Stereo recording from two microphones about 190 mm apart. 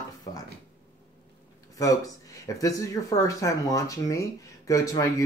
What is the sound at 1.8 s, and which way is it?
Speech, 20° left (ahead or behind).